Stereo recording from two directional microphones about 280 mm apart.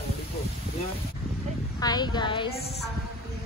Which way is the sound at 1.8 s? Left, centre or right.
Centre.